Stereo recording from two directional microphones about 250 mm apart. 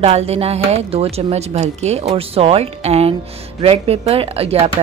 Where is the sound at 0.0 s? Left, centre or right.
Right.